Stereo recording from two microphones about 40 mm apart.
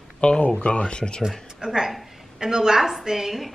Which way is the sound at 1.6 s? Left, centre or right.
Centre.